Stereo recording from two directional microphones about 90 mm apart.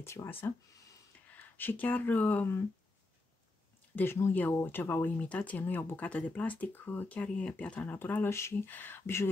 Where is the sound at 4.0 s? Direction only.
30° left (ahead or behind).